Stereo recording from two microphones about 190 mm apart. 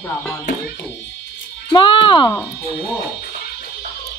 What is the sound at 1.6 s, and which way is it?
Speech, 25° left (ahead or behind).